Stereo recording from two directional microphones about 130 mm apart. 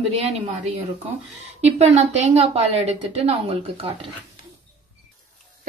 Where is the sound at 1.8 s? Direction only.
55° right (ahead or behind).